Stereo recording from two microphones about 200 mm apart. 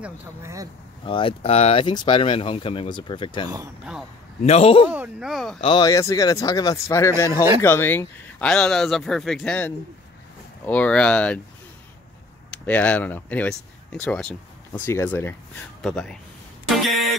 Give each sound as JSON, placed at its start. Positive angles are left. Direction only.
{"t": 0.0, "sound": "speech", "side_deg": -15}
{"t": 1.0, "sound": "speech", "side_deg": 25}
{"t": 4.8, "sound": "speech", "side_deg": -5}
{"t": 5.6, "sound": "speech", "side_deg": 20}
{"t": 12.6, "sound": "speech", "side_deg": 10}
{"t": 16.6, "sound": "a sound", "side_deg": 0}